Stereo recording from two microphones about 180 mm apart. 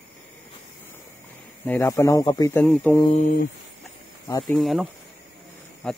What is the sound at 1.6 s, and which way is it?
Speech, 15° left (ahead or behind).